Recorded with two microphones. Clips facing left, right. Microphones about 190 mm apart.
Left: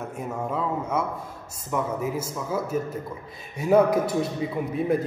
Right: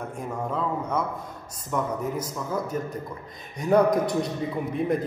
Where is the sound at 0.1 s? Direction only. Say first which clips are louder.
Left 1 dB; 5° left (ahead or behind).